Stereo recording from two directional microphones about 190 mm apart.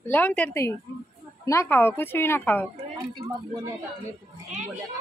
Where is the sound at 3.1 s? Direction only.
20° right (ahead or behind).